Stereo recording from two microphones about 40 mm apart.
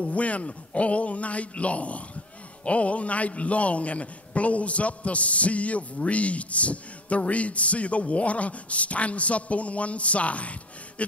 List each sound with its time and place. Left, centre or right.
0.0 s a man's voice: left